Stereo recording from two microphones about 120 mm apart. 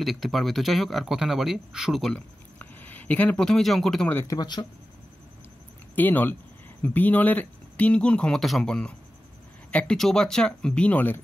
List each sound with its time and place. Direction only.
0.0 s speech: centre (ahead or behind)
2.1 s speech: 15° left (ahead or behind)
4.1 s a man's voice: 20° left (ahead or behind)
4.4 s speech: 35° left (ahead or behind)
5.9 s speech: 15° left (ahead or behind)